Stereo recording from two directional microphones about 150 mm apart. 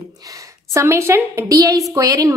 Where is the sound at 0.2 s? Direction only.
25° right (ahead or behind).